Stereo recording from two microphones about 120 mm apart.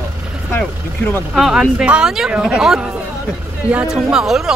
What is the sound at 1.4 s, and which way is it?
Speech, 5° right (ahead or behind).